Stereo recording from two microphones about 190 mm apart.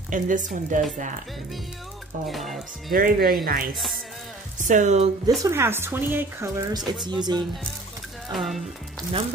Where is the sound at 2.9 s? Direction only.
50° right (ahead or behind).